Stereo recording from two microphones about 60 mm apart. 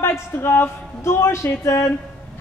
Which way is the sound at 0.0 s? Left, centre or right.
Left.